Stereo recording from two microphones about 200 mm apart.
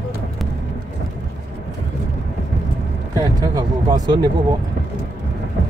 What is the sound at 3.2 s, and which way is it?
Speech, 20° right (ahead or behind).